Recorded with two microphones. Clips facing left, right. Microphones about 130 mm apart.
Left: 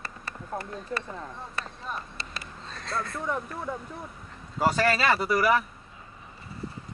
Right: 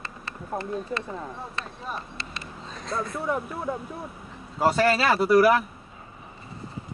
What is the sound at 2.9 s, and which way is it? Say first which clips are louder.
Speech: right 3 dB; 15° right (ahead or behind).